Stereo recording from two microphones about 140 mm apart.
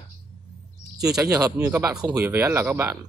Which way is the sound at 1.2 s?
25° right (ahead or behind).